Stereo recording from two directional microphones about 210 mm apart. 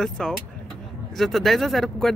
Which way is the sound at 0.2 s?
5° left (ahead or behind).